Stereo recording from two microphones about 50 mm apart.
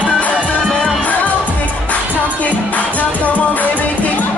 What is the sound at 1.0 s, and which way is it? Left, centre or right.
Music, left.